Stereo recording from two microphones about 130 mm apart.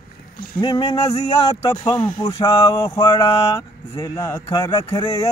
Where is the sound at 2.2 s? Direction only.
30° left (ahead or behind).